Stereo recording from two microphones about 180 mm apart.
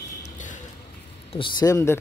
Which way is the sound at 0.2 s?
45° left (ahead or behind).